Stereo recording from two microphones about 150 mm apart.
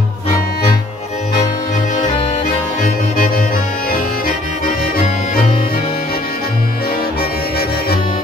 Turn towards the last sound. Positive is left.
turn(degrees=90)